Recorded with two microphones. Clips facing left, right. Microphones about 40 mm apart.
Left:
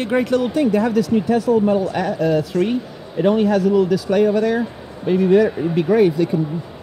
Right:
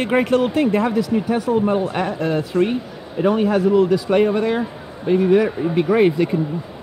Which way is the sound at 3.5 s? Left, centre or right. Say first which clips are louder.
Even; right.